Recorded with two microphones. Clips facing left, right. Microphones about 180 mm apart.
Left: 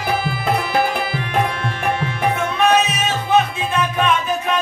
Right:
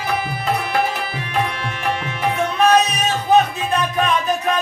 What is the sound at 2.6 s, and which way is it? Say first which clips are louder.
Music: right 1 dB; 35° right (ahead or behind).